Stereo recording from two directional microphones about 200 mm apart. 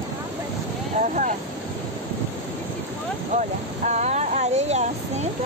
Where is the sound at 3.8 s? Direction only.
35° right (ahead or behind).